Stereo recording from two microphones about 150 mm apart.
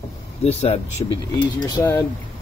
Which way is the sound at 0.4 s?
45° left (ahead or behind).